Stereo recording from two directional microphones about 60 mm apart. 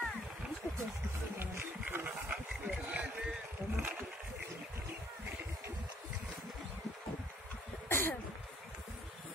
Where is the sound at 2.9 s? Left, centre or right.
Right.